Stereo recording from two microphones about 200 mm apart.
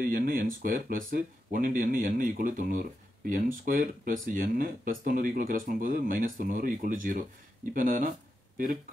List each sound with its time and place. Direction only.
0.0 s speech: 45° right (ahead or behind)